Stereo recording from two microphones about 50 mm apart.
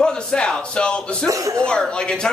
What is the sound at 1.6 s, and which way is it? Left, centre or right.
Speech, centre.